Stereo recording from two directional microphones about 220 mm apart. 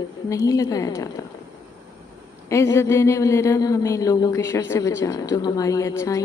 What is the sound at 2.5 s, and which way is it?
A woman's voice, 15° left (ahead or behind).